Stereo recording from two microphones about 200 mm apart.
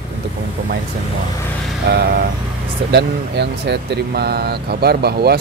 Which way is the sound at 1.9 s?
50° right (ahead or behind).